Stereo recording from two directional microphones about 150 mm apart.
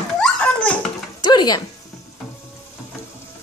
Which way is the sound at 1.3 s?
25° left (ahead or behind).